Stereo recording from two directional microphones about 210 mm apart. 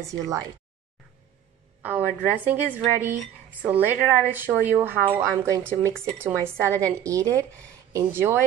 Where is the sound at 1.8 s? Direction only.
10° right (ahead or behind).